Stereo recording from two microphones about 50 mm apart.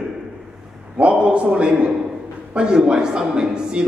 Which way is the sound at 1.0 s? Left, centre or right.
Right.